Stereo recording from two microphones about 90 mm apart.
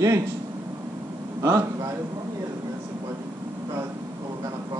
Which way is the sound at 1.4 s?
35° right (ahead or behind).